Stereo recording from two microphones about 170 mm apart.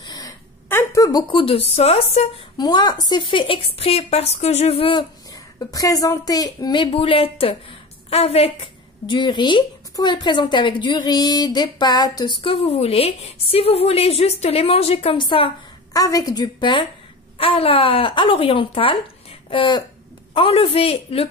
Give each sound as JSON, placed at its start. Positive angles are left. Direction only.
{"t": 0.0, "sound": "a sound", "side_deg": 25}
{"t": 0.7, "sound": "speech", "side_deg": 15}
{"t": 2.5, "sound": "speech", "side_deg": 25}
{"t": 15.9, "sound": "speech", "side_deg": 20}